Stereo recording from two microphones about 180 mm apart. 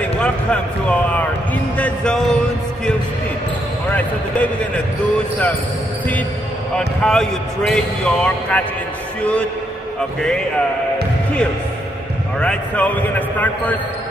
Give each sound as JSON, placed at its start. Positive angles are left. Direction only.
{"t": 0.0, "sound": "a man's voice", "side_deg": 5}
{"t": 3.9, "sound": "a man's voice", "side_deg": 10}
{"t": 7.0, "sound": "a man's voice", "side_deg": 5}
{"t": 12.4, "sound": "a man's voice", "side_deg": 5}